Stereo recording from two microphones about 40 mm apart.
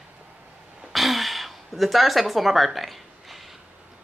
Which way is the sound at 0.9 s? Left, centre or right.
Centre.